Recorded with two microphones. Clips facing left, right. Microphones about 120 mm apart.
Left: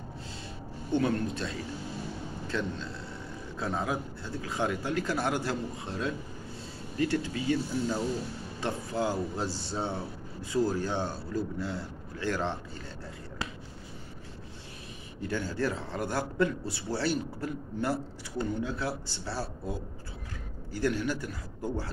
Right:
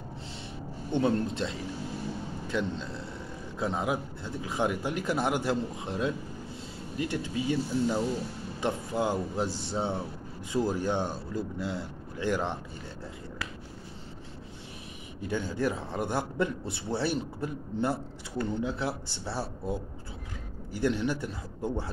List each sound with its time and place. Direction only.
0.9 s a man's voice: 25° right (ahead or behind)
15.2 s a man's voice: 15° right (ahead or behind)